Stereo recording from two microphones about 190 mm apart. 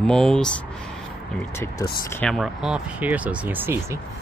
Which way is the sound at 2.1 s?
5° left (ahead or behind).